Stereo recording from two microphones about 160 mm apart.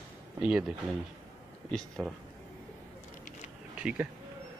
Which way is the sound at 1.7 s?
Centre (ahead or behind).